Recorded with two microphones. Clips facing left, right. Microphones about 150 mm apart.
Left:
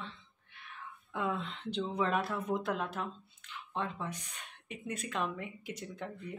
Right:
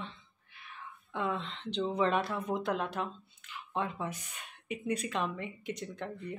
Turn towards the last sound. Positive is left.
turn(degrees=5)  # may be behind; listen again after turning